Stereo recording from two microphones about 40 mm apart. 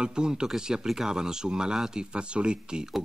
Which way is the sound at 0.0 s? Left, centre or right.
Right.